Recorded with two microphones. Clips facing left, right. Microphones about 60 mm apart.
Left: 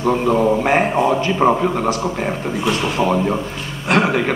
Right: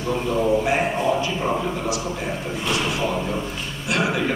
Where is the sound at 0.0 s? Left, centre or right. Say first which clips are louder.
Left 6 dB; left.